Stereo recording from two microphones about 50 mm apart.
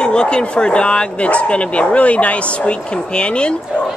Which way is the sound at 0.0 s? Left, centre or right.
Centre.